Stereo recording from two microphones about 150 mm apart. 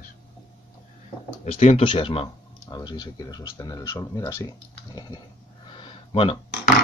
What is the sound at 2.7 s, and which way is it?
Speech, 25° left (ahead or behind).